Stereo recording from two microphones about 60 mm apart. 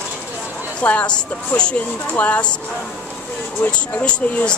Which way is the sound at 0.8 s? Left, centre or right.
Left.